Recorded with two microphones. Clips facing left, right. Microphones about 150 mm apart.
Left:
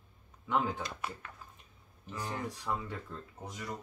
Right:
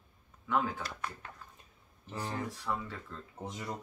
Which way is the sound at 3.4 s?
25° right (ahead or behind).